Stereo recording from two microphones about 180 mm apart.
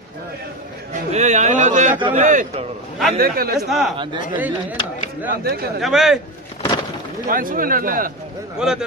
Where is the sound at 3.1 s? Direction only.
55° right (ahead or behind).